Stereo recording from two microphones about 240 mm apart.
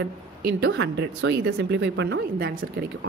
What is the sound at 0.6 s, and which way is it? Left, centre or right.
A woman's voice, right.